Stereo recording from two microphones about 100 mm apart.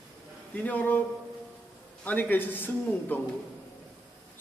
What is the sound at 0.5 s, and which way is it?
Speech, 15° left (ahead or behind).